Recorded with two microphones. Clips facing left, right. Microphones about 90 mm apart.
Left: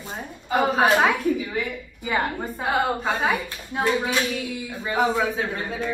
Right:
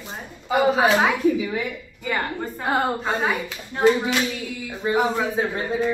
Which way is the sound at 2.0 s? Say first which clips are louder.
Left 1 dB; 15° left (ahead or behind).